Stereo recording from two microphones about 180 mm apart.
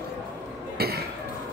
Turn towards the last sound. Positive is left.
turn(degrees=-60)  # may be behind; listen again after turning